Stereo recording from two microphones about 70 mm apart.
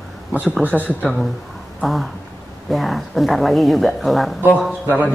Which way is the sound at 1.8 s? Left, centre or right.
Centre.